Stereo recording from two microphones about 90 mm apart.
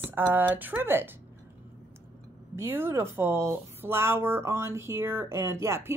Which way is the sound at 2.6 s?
25° right (ahead or behind).